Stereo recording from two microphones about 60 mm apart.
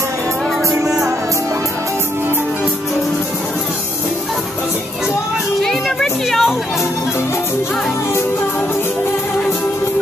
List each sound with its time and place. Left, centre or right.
0.7 s music: right
5.6 s music: centre